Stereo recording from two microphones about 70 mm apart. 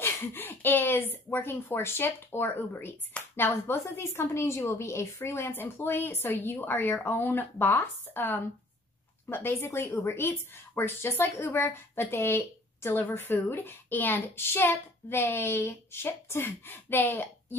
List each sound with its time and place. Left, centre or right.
0.0 s a woman's voice: left